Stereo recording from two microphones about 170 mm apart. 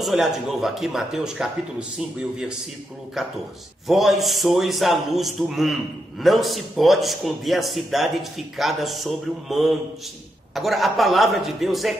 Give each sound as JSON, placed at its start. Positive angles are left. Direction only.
{"t": 0.0, "sound": "a man's voice", "side_deg": 0}